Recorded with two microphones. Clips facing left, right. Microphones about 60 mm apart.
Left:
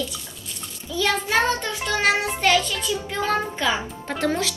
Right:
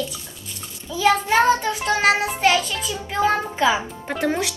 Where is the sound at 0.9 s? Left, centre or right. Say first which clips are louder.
Right 4 dB; centre.